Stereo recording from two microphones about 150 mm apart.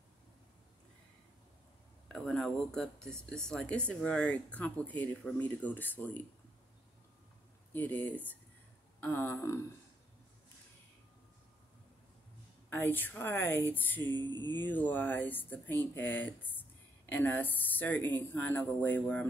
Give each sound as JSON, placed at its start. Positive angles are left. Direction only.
{"t": 2.0, "sound": "speech", "side_deg": 0}
{"t": 7.7, "sound": "speech", "side_deg": 10}
{"t": 12.6, "sound": "speech", "side_deg": 15}
{"t": 14.0, "sound": "a sound", "side_deg": -30}
{"t": 14.6, "sound": "speech", "side_deg": 10}